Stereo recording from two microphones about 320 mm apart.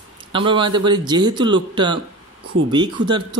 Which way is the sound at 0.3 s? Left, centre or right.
Centre.